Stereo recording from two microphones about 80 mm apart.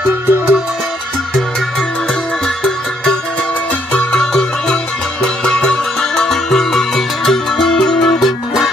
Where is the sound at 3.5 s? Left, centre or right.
Centre.